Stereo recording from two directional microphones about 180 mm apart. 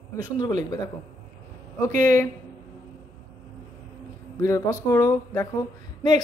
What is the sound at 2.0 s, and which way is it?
Speech, 15° left (ahead or behind).